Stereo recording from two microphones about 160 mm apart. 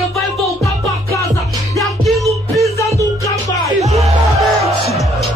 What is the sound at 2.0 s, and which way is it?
Music, centre (ahead or behind).